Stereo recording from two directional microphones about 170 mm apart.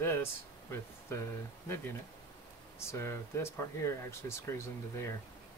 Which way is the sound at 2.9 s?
15° left (ahead or behind).